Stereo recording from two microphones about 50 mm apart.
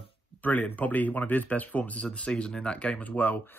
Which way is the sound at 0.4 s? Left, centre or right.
Left.